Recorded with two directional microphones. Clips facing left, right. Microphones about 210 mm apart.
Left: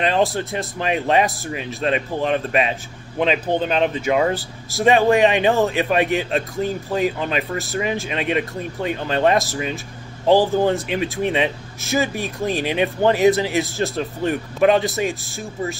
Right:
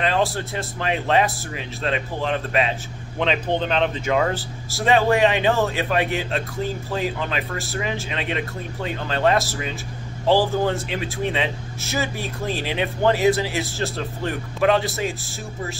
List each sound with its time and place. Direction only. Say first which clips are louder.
0.0 s speech: left 3 dB; 20° left (ahead or behind)